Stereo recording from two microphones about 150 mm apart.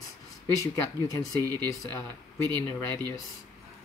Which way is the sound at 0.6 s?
20° left (ahead or behind).